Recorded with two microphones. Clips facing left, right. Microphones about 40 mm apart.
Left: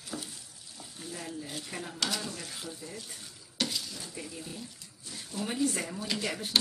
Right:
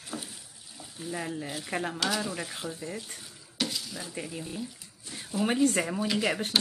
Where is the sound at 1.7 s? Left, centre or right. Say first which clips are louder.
Right 8 dB; right.